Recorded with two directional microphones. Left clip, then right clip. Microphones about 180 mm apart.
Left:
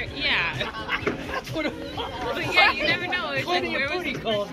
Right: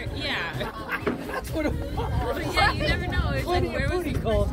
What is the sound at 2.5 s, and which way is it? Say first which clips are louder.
Speech: left 4 dB; 80° right.